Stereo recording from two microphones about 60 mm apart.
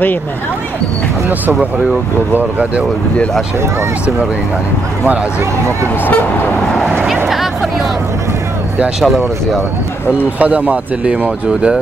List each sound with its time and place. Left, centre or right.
2.3 s speech: right
9.0 s speech: centre
10.4 s speech: right